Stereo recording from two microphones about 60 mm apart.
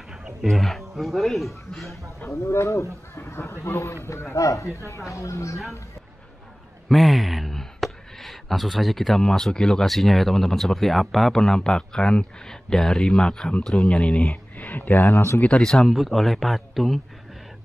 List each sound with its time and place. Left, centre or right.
0.1 s music: centre
0.5 s a man's voice: centre
2.3 s speech: left
6.9 s speech: centre
14.3 s speech: left
15.0 s speech: left
15.6 s a man's voice: centre